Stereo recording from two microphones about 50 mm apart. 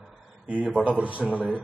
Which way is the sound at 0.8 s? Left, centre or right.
Right.